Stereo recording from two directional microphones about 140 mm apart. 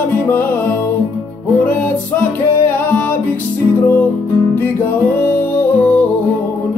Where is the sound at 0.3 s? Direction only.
15° left (ahead or behind).